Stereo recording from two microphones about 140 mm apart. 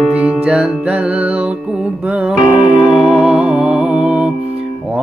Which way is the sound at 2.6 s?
35° left (ahead or behind).